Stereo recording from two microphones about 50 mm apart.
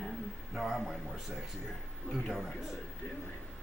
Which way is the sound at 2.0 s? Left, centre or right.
Left.